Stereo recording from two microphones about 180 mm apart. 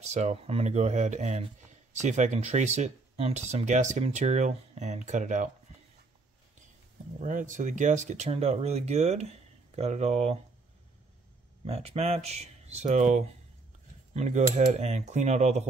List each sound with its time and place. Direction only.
0.0 s speech: 40° right (ahead or behind)
7.2 s speech: 45° right (ahead or behind)
11.6 s speech: 35° right (ahead or behind)